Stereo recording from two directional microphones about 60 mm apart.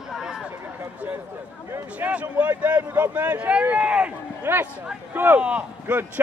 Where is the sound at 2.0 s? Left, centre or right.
Right.